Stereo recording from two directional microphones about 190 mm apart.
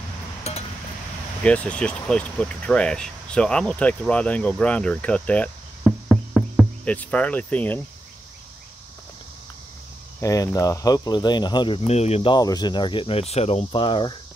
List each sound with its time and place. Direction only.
0.4 s a sound: 35° left (ahead or behind)
1.4 s speech: 5° left (ahead or behind)
10.2 s speech: 20° left (ahead or behind)